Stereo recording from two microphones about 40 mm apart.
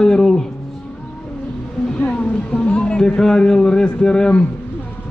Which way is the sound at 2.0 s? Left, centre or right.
Left.